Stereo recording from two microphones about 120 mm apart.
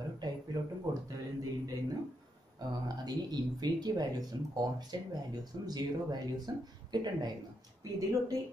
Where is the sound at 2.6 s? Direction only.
35° right (ahead or behind).